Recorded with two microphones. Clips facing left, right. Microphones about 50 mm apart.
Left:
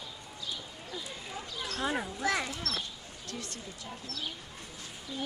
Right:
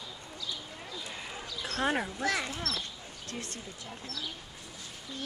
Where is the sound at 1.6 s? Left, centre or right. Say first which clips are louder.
Right 3 dB; right.